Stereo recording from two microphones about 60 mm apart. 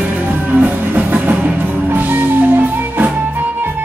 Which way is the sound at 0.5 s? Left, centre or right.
Right.